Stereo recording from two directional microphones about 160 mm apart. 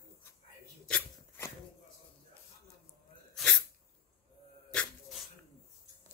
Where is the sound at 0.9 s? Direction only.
15° left (ahead or behind).